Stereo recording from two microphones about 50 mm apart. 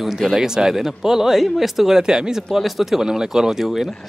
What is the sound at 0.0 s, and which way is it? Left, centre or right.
Speech, centre.